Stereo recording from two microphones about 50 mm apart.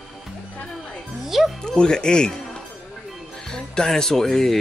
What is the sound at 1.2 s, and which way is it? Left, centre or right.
Music, centre.